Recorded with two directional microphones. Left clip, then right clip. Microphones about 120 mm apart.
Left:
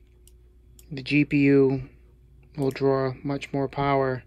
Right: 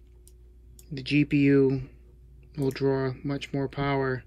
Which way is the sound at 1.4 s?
90° right.